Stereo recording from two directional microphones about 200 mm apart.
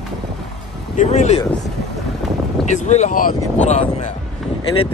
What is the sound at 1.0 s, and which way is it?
Speech, 35° left (ahead or behind).